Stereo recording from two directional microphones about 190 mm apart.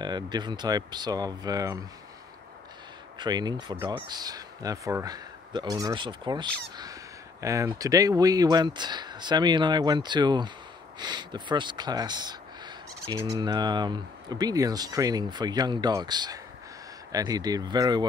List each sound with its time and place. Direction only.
0.0 s speech: 25° right (ahead or behind)
3.2 s speech: 20° right (ahead or behind)